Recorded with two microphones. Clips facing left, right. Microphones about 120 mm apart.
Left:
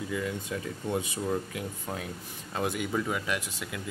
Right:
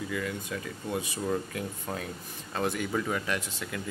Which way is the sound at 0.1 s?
20° left (ahead or behind).